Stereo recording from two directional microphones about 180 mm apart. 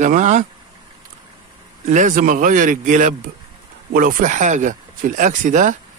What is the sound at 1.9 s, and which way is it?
A man's voice, 45° right (ahead or behind).